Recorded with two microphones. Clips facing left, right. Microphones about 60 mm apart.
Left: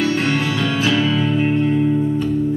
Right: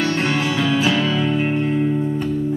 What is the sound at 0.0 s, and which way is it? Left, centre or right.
Music, centre.